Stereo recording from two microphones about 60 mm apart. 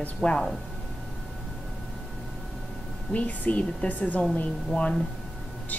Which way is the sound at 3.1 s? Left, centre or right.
Left.